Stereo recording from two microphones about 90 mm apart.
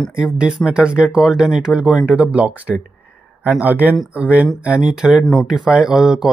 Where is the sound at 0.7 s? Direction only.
10° right (ahead or behind).